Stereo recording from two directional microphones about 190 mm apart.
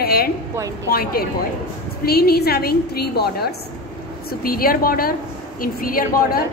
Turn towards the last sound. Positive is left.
turn(degrees=50)  # may be behind; listen again after turning